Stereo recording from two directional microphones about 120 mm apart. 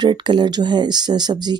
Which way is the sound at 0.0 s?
40° right (ahead or behind).